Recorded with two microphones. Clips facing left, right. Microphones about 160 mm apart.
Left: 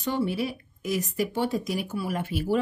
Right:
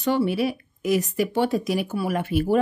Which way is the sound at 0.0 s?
75° right (ahead or behind).